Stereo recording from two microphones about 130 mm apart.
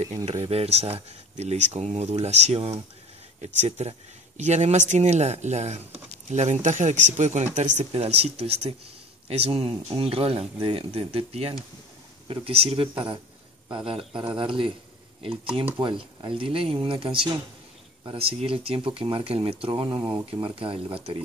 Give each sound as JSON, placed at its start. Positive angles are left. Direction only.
{"t": 0.0, "sound": "speech", "side_deg": -55}
{"t": 7.9, "sound": "speech", "side_deg": -50}